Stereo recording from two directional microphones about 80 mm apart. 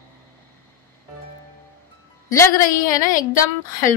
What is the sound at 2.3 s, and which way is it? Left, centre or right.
A woman's voice, left.